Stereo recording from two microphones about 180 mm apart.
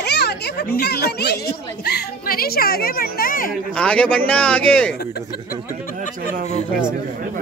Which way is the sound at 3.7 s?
5° left (ahead or behind).